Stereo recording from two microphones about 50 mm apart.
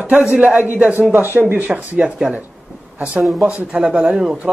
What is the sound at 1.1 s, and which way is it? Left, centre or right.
Speech, right.